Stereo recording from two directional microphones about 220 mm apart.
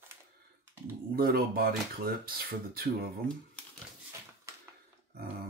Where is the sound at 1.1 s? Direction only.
45° right (ahead or behind).